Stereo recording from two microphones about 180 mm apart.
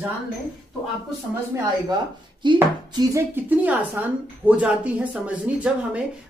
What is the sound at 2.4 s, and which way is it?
Speech, 25° right (ahead or behind).